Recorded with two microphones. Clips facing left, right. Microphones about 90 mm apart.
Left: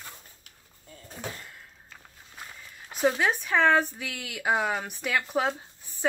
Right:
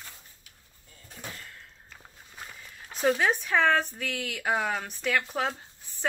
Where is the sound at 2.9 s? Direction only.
5° left (ahead or behind).